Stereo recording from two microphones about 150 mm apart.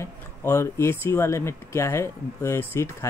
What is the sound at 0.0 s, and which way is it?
Speech, 15° left (ahead or behind).